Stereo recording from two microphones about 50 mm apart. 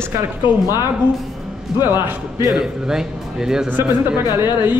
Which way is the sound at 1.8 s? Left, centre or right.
Right.